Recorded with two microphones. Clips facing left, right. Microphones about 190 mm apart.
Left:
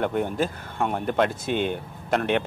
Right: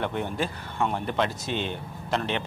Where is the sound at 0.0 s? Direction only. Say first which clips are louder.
Left 4 dB; 45° left (ahead or behind).